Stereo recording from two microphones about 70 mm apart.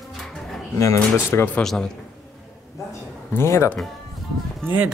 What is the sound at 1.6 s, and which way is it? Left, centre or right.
Speech, centre.